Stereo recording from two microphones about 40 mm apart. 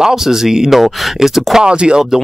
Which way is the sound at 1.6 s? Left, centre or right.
Right.